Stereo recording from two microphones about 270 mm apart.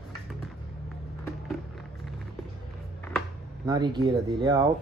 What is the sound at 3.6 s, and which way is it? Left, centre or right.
Speech, centre.